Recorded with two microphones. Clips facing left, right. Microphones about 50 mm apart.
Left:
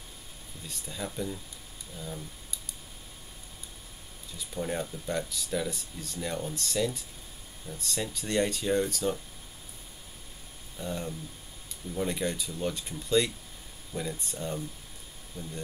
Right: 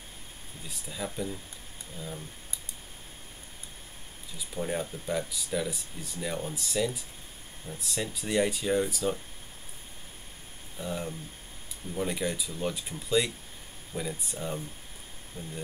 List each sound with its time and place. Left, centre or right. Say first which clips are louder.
0.7 s speech: right 1 dB; centre
4.6 s speech: right 1 dB; centre
10.8 s speech: even; centre
15.3 s speech: left 1 dB; right